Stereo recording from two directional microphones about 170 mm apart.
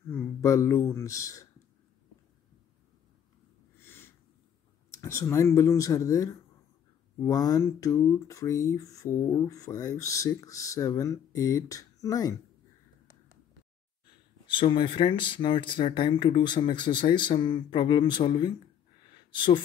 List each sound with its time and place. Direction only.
0.1 s speech: 15° left (ahead or behind)
3.8 s sniff: 15° left (ahead or behind)
4.9 s speech: 15° left (ahead or behind)
14.5 s speech: 30° left (ahead or behind)